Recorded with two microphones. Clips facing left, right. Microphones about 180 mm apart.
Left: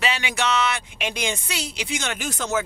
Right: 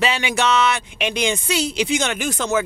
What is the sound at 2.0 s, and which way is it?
Speech, 75° right (ahead or behind).